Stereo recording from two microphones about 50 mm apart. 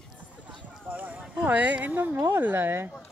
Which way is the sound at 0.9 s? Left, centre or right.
Right.